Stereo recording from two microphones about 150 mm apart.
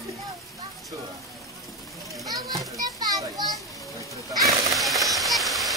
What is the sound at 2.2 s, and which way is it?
A child's voice, 25° right (ahead or behind).